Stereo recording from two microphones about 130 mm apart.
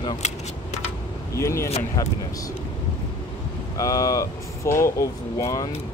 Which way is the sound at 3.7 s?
25° left (ahead or behind).